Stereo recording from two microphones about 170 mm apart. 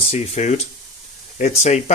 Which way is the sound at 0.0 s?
40° left (ahead or behind).